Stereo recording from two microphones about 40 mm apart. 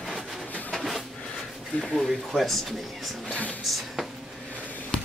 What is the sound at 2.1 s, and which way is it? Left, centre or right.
Speech, centre.